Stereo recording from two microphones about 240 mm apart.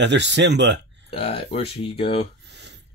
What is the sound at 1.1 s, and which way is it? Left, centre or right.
Speech, left.